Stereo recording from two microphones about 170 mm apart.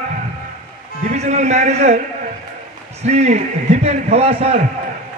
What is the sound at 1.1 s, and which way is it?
Speech, 40° right (ahead or behind).